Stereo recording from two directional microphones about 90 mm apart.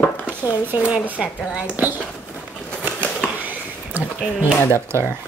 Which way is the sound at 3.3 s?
20° right (ahead or behind).